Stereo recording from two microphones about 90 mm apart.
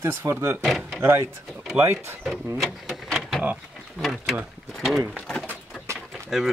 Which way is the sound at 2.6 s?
Centre (ahead or behind).